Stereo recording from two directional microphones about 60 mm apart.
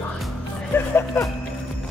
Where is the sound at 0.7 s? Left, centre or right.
Left.